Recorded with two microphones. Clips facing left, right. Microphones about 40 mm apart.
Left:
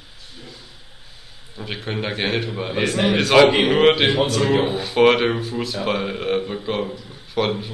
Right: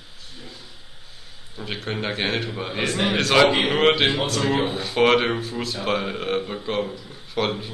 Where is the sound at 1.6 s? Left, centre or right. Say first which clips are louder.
Left 1 dB; centre.